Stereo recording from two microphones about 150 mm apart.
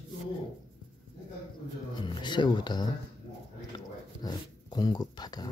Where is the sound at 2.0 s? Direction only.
30° left (ahead or behind).